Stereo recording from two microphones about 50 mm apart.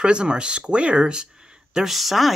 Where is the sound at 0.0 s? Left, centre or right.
Centre.